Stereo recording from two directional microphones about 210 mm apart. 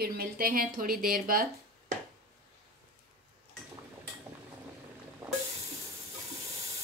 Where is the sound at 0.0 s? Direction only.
45° right (ahead or behind).